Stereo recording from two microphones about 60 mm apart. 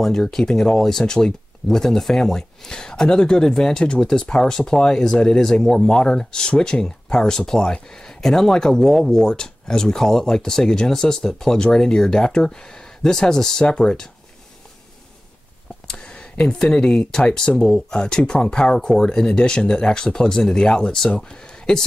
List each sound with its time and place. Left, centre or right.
0.0 s speech: centre
15.9 s speech: centre